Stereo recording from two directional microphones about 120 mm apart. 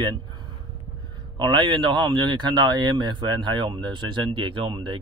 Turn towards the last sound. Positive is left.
turn(degrees=-45)  # may be behind; listen again after turning